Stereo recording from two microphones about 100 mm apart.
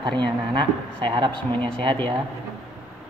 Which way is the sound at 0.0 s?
55° right (ahead or behind).